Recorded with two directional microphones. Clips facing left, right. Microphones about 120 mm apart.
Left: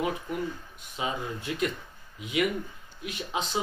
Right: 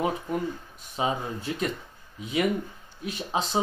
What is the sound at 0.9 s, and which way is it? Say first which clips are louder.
Speech: right 4 dB; 35° right (ahead or behind).